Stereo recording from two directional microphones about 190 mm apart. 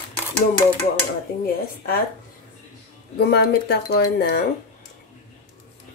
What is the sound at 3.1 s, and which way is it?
Speech, 60° left (ahead or behind).